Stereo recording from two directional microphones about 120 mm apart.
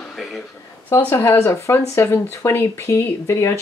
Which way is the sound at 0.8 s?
20° left (ahead or behind).